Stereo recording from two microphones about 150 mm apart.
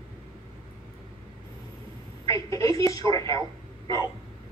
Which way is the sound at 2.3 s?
20° left (ahead or behind).